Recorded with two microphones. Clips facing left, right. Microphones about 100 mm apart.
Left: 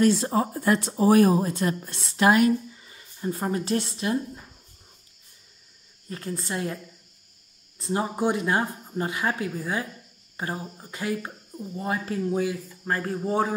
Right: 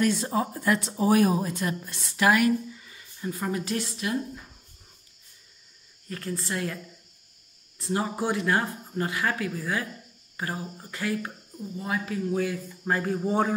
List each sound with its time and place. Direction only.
0.0 s speech: 35° left (ahead or behind)
6.0 s speech: 20° left (ahead or behind)
7.8 s speech: 20° left (ahead or behind)
11.8 s speech: 35° left (ahead or behind)
12.6 s speech: centre (ahead or behind)